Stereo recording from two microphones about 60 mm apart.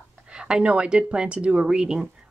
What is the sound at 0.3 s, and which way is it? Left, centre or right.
Speech, centre.